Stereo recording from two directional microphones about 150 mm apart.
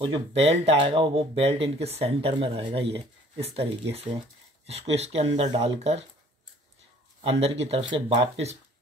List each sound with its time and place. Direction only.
0.0 s speech: 35° right (ahead or behind)
7.2 s speech: 40° right (ahead or behind)